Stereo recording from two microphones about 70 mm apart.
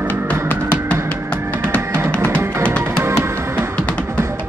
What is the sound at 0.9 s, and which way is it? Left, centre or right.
Music, centre.